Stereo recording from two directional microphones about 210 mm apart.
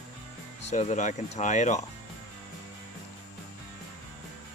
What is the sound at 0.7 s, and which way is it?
Speech, 35° left (ahead or behind).